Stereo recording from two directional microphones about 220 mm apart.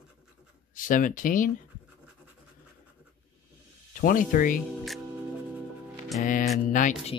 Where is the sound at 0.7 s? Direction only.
40° left (ahead or behind).